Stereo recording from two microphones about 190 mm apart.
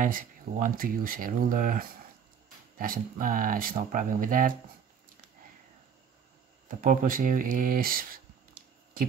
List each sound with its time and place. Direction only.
0.0 s speech: 45° right (ahead or behind)
6.7 s speech: 45° right (ahead or behind)